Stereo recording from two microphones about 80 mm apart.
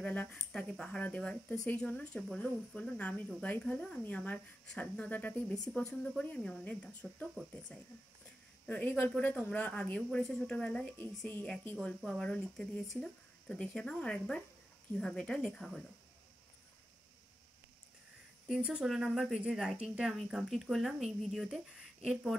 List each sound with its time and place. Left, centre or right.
0.0 s speech: centre
0.8 s speech: centre
8.6 s speech: centre
9.1 s speech: centre
12.0 s speech: centre
18.5 s speech: centre